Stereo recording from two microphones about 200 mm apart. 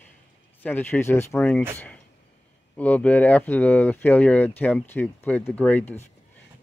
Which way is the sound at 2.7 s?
5° left (ahead or behind).